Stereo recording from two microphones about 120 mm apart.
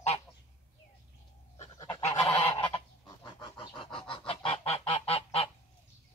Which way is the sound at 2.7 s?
40° left (ahead or behind).